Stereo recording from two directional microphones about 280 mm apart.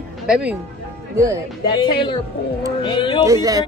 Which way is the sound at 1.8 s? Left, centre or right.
Centre.